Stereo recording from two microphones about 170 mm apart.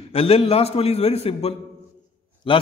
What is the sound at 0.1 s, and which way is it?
A man's voice, 35° left (ahead or behind).